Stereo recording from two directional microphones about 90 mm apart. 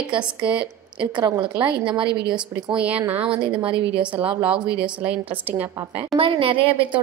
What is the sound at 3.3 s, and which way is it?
A woman's voice, 75° right (ahead or behind).